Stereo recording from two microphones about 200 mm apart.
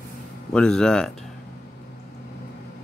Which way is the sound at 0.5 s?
5° left (ahead or behind).